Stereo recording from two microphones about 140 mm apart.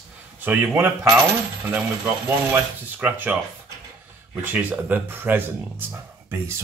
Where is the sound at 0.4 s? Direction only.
15° right (ahead or behind).